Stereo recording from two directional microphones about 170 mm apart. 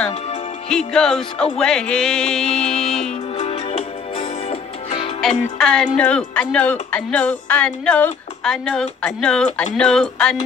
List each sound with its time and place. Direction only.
0.7 s music: 5° left (ahead or behind)
3.3 s music: 35° left (ahead or behind)
5.6 s music: centre (ahead or behind)
5.9 s speech: 5° left (ahead or behind)
9.0 s music: 5° left (ahead or behind)